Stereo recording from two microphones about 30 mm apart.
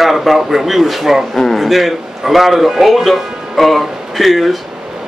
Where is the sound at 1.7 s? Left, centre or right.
Centre.